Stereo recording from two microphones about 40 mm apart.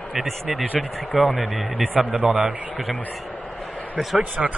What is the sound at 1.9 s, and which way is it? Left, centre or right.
Speech, centre.